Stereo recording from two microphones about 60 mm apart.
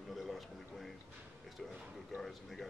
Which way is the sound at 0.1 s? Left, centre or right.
Centre.